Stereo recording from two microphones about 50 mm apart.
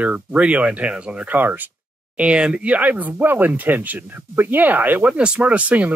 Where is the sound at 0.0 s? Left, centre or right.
Right.